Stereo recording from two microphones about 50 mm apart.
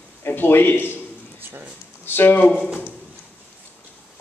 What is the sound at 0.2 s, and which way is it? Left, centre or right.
Speech, left.